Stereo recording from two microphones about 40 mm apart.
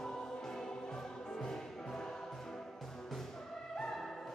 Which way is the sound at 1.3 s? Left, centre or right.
Centre.